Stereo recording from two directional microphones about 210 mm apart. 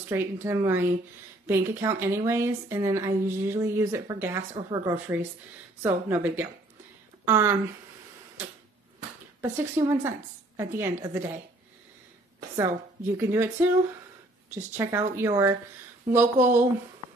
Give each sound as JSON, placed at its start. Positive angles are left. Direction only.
{"t": 0.1, "sound": "a woman's voice", "side_deg": -10}
{"t": 9.4, "sound": "a woman's voice", "side_deg": -10}
{"t": 12.5, "sound": "a woman's voice", "side_deg": -10}